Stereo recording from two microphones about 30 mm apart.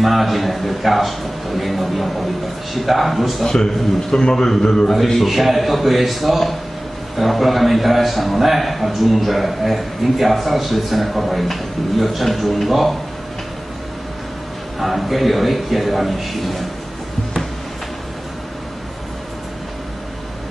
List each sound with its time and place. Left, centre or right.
0.0 s a man's voice: centre
3.4 s a man's voice: centre
4.8 s a man's voice: centre
14.8 s a man's voice: centre